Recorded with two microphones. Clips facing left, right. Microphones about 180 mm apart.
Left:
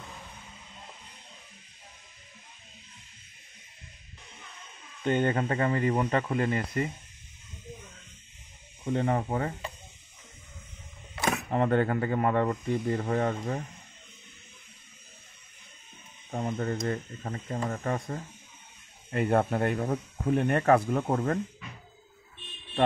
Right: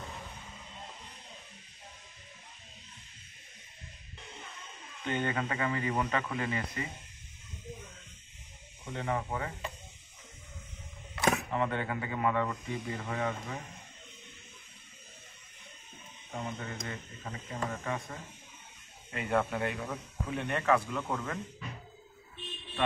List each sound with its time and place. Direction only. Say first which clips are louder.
5.0 s speech: left 7 dB; 40° left (ahead or behind)
8.9 s speech: left 6 dB; 40° left (ahead or behind)
11.5 s speech: left 7 dB; 45° left (ahead or behind)
16.3 s speech: left 8 dB; 45° left (ahead or behind)